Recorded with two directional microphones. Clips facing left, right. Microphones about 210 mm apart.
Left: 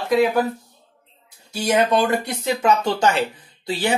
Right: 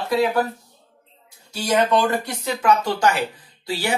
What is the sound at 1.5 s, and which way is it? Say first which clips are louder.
Speech: left 1 dB; 20° left (ahead or behind).